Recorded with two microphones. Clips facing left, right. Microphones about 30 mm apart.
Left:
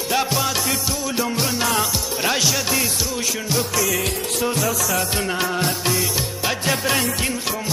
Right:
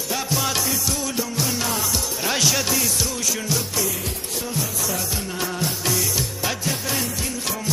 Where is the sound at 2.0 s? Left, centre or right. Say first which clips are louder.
Left 3 dB; centre.